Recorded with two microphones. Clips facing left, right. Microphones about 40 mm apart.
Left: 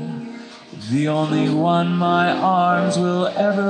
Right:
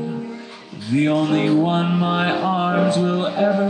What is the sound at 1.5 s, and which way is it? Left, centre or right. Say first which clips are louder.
Music: even; centre.